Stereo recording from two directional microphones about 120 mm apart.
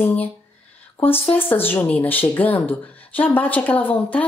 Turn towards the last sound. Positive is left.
turn(degrees=15)  # may be behind; listen again after turning